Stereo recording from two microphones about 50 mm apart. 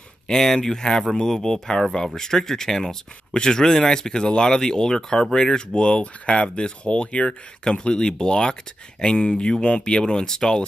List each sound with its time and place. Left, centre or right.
0.3 s speech: centre